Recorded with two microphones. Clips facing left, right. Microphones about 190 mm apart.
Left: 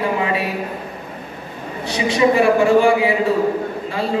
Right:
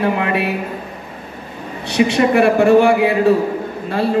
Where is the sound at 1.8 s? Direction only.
65° right (ahead or behind).